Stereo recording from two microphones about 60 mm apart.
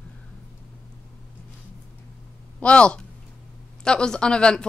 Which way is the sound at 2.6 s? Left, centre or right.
Centre.